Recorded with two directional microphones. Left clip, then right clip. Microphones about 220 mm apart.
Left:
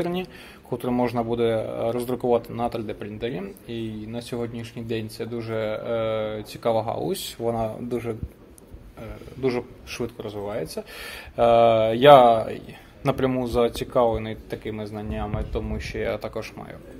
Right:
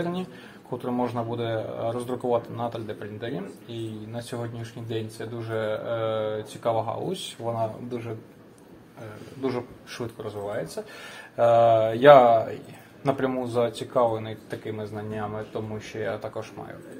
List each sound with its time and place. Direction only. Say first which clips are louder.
0.0 s a man's voice: left 3 dB; 45° left (ahead or behind)
9.4 s a man's voice: left 4 dB; 40° left (ahead or behind)